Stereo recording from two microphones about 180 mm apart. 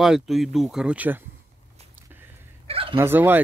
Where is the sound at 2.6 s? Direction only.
30° right (ahead or behind).